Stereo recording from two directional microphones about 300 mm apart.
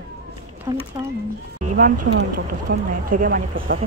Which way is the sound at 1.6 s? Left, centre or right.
Right.